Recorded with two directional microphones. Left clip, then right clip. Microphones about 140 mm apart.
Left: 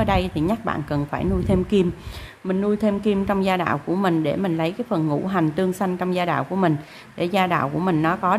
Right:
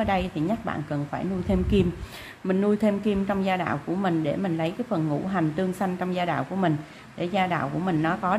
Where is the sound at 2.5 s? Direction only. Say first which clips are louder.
Left 1 dB; 5° left (ahead or behind).